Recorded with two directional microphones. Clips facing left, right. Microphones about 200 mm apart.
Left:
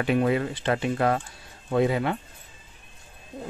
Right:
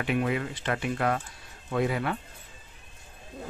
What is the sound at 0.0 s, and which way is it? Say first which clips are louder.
Speech: left 5 dB; 35° left (ahead or behind).